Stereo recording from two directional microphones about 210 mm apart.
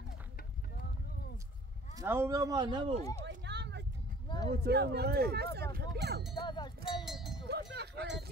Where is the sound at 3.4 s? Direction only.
55° right (ahead or behind).